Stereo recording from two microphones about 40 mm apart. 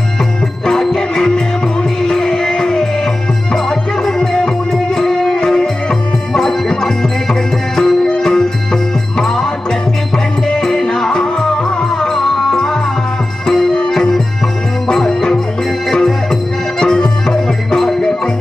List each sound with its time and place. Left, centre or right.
0.7 s music: centre
10.1 s music: centre